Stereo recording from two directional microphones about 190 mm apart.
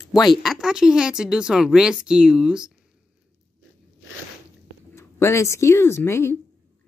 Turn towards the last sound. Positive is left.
turn(degrees=15)  # may be behind; listen again after turning